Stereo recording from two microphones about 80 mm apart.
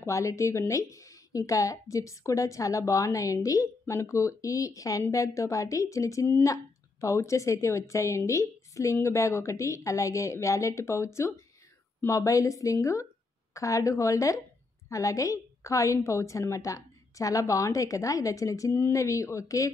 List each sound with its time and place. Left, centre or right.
0.0 s a woman's voice: left